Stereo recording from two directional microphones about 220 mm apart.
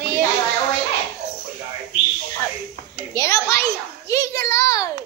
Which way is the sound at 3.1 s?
15° left (ahead or behind).